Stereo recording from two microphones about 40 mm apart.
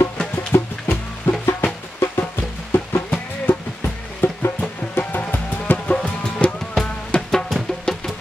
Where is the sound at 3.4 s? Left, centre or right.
Left.